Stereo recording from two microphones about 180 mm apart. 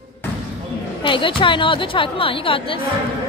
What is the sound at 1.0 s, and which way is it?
A woman's voice, 30° left (ahead or behind).